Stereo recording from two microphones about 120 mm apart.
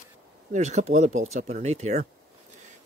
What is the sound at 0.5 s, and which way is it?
Speech, 70° right (ahead or behind).